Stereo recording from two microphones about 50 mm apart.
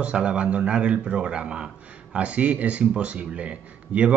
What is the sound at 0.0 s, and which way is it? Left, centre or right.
Speech, right.